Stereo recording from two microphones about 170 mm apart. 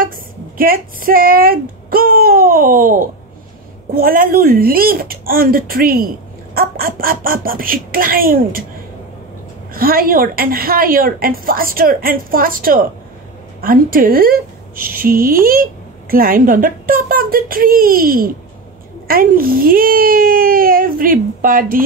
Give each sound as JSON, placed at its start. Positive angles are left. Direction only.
{"t": 0.0, "sound": "a woman's voice", "side_deg": -55}
{"t": 9.8, "sound": "a woman's voice", "side_deg": -60}